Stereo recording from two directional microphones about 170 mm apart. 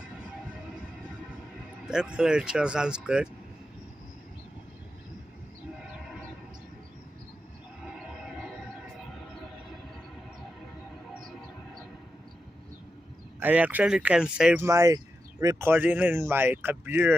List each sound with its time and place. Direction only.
1.9 s speech: 5° right (ahead or behind)
7.8 s a sound: 5° right (ahead or behind)
13.4 s speech: 10° right (ahead or behind)